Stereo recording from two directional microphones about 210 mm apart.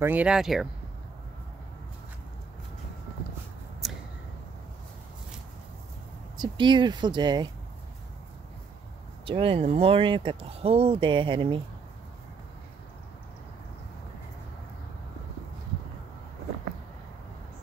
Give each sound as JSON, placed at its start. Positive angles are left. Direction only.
{"t": 0.0, "sound": "speech", "side_deg": -5}
{"t": 3.8, "sound": "a sound", "side_deg": 0}
{"t": 6.3, "sound": "speech", "side_deg": -20}
{"t": 9.2, "sound": "speech", "side_deg": -25}